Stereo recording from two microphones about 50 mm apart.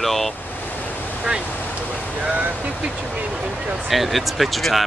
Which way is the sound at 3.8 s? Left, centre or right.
Centre.